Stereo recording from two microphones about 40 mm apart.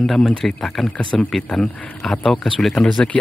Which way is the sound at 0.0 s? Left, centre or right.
Centre.